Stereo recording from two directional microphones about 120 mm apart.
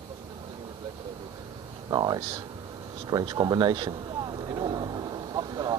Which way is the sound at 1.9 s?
35° right (ahead or behind).